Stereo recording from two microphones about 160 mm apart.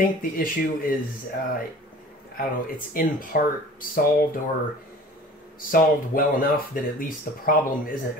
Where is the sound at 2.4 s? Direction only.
65° left (ahead or behind).